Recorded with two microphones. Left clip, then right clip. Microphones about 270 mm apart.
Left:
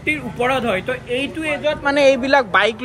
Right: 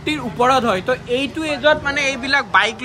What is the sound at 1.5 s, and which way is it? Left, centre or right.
Speech, right.